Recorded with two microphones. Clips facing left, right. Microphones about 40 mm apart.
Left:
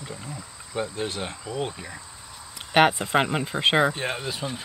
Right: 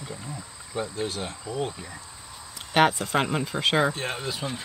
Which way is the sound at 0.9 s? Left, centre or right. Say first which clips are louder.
Left 1 dB; left.